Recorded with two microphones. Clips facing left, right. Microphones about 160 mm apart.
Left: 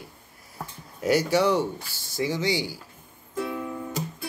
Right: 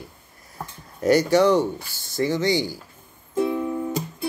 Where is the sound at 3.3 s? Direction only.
20° right (ahead or behind).